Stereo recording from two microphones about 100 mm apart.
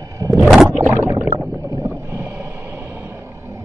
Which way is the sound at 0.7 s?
20° right (ahead or behind).